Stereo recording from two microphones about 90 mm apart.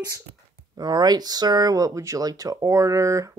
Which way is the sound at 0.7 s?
50° right (ahead or behind).